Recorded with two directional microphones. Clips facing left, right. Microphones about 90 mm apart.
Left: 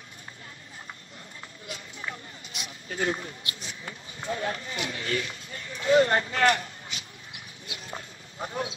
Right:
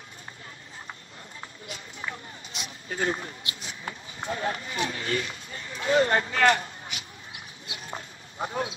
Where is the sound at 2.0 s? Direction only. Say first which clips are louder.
Right 2 dB; 30° right (ahead or behind).